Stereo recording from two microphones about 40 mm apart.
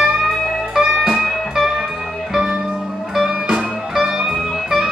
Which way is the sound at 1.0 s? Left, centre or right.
Centre.